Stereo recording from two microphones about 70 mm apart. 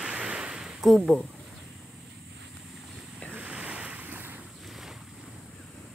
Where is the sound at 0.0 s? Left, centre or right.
Centre.